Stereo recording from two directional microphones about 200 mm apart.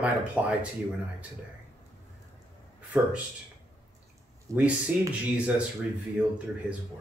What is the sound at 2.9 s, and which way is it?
Speech, 5° right (ahead or behind).